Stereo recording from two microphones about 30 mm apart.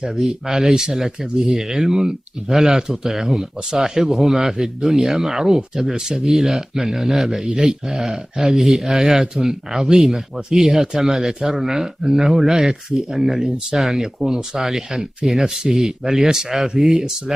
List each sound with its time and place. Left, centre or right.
0.1 s a man's voice: centre
0.5 s a man's voice: centre
6.3 s speech: centre
6.7 s a man's voice: centre
8.5 s a man's voice: centre
9.9 s a man's voice: centre
13.7 s speech: centre
14.2 s speech: centre
15.7 s a man's voice: centre